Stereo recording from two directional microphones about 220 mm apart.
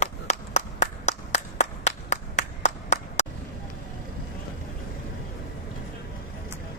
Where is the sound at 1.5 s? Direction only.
30° left (ahead or behind).